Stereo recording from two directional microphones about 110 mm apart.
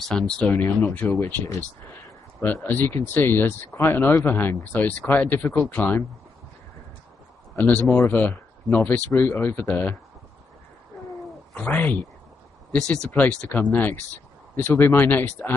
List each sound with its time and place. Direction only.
0.0 s speech: 5° left (ahead or behind)
0.5 s speech: 20° left (ahead or behind)
2.4 s speech: 15° left (ahead or behind)
7.5 s speech: 15° left (ahead or behind)
11.5 s speech: 15° left (ahead or behind)